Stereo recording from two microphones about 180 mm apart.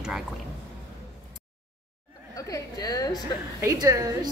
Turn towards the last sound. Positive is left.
turn(degrees=-20)  # may be behind; listen again after turning